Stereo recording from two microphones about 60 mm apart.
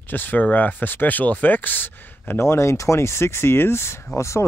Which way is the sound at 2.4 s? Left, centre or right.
Left.